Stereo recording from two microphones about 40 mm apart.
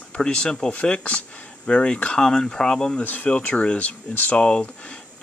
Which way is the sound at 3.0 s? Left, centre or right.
Left.